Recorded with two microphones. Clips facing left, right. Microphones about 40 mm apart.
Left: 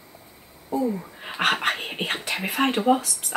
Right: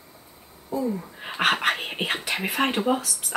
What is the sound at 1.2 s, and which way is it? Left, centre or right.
Speech, centre.